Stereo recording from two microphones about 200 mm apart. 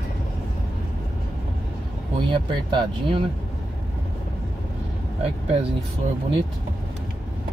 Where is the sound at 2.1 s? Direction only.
25° right (ahead or behind).